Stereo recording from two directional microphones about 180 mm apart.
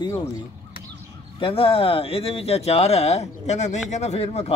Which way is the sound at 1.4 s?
30° left (ahead or behind).